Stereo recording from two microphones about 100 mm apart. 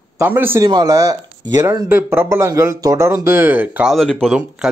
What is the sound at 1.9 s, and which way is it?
Speech, 20° right (ahead or behind).